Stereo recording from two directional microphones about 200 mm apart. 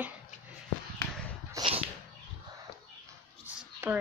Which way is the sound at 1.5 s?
30° right (ahead or behind).